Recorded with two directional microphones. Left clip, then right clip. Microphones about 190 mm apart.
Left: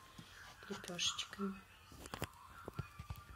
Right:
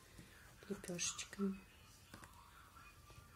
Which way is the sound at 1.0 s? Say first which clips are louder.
Left 7 dB; 50° right (ahead or behind).